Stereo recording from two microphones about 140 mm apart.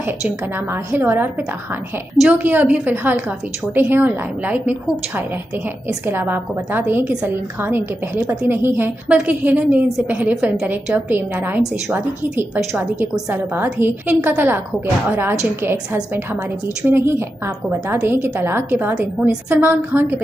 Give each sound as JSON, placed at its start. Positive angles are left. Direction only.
{"t": 0.9, "sound": "a woman's voice", "side_deg": -15}